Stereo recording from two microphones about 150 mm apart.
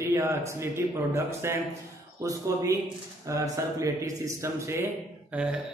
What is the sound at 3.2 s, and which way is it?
Speech, 20° right (ahead or behind).